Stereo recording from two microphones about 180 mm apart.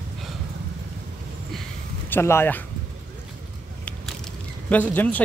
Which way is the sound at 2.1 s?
15° left (ahead or behind).